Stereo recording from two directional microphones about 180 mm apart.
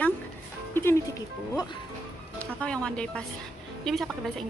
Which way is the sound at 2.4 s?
5° left (ahead or behind).